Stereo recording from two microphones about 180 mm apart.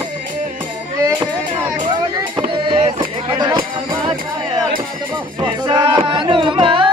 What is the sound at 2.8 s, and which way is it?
Music, 30° right (ahead or behind).